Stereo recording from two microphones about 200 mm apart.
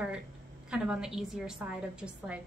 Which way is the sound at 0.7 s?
5° right (ahead or behind).